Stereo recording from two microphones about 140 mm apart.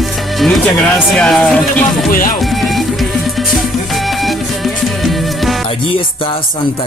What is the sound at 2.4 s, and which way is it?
Music, centre (ahead or behind).